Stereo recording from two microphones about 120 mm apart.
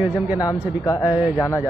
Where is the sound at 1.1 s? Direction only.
15° right (ahead or behind).